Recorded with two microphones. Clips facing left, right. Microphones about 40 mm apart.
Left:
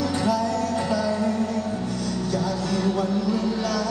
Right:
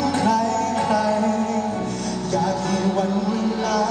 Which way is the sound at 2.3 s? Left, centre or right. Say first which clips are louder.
Right 5 dB; right.